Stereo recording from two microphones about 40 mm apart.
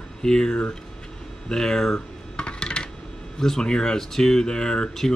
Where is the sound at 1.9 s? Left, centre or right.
Left.